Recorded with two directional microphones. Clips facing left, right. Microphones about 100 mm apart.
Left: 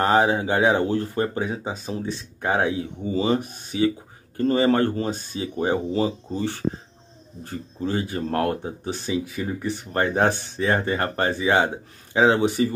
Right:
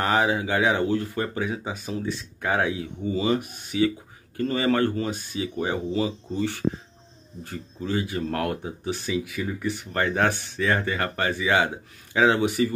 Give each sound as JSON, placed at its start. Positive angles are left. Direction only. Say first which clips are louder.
{"t": 0.0, "sound": "speech", "louder": "left 4 dB", "side_deg": 35}